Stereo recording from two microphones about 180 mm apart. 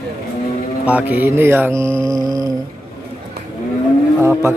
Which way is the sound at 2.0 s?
20° right (ahead or behind).